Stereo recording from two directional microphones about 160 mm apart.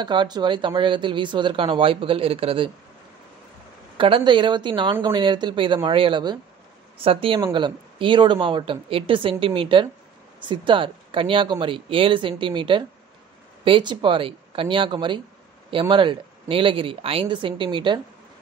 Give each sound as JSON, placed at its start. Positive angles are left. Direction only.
{"t": 0.0, "sound": "speech", "side_deg": -30}
{"t": 4.0, "sound": "speech", "side_deg": -30}